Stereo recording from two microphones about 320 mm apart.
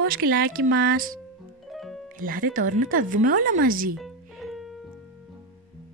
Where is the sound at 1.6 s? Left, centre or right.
Centre.